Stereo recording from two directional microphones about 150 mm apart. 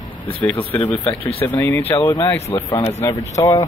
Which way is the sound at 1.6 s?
15° left (ahead or behind).